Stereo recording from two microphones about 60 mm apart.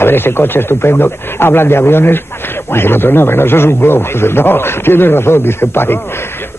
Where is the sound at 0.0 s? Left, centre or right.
Left.